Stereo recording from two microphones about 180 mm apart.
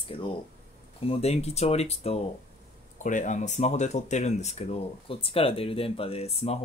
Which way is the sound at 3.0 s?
45° left (ahead or behind).